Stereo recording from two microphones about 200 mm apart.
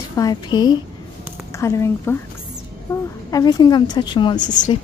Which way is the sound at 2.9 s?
15° left (ahead or behind).